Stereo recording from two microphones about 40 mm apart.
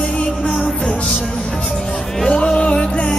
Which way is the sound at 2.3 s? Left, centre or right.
Left.